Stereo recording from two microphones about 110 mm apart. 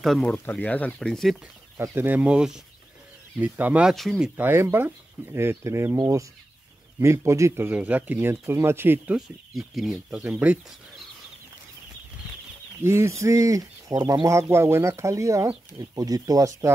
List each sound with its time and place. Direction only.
0.0 s speech: centre (ahead or behind)
0.3 s speech: 15° left (ahead or behind)
1.8 s speech: 20° right (ahead or behind)
3.9 s speech: centre (ahead or behind)
4.4 s speech: 20° right (ahead or behind)
9.6 s speech: centre (ahead or behind)
12.8 s speech: 25° right (ahead or behind)